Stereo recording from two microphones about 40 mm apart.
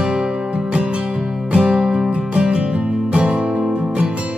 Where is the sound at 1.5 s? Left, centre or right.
Right.